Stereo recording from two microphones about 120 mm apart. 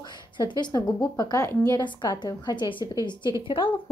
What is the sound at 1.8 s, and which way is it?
A woman's voice, 40° left (ahead or behind).